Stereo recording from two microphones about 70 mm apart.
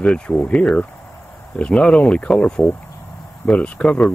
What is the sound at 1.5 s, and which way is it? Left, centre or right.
Speech, centre.